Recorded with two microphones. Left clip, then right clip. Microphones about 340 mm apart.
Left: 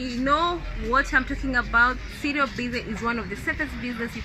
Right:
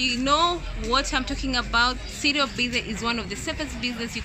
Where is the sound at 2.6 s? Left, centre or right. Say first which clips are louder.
Right 4 dB; right.